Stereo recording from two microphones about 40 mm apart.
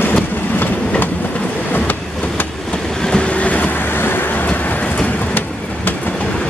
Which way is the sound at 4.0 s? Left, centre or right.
Left.